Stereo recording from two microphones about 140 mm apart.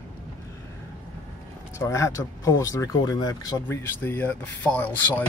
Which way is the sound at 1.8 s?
20° left (ahead or behind).